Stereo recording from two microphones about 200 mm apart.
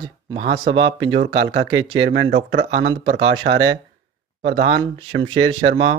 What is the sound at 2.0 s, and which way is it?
Speech, 60° right (ahead or behind).